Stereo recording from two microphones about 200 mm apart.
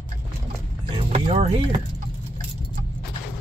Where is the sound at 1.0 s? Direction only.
30° right (ahead or behind).